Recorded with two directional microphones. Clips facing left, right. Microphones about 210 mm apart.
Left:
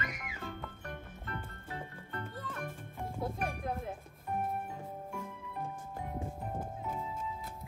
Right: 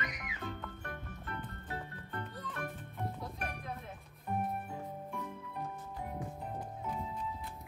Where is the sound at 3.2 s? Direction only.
50° left (ahead or behind).